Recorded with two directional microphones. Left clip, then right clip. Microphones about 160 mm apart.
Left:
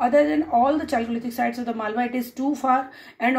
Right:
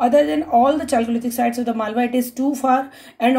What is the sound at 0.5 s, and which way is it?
Speech, 25° right (ahead or behind).